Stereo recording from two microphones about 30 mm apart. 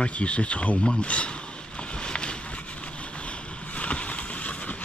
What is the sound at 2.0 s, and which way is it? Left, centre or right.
Boat, left.